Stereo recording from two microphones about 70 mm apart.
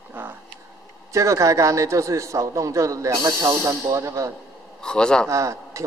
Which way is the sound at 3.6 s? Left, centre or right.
Right.